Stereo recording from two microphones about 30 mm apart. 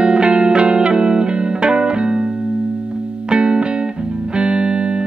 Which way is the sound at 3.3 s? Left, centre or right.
Right.